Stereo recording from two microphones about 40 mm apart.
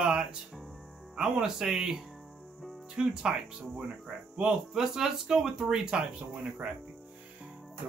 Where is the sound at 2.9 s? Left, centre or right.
Centre.